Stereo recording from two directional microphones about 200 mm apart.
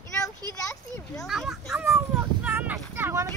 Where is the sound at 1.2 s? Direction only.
Centre (ahead or behind).